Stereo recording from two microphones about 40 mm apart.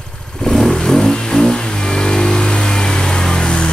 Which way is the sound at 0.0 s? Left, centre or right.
Centre.